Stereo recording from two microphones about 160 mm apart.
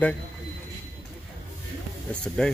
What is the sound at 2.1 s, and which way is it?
Speech, 5° left (ahead or behind).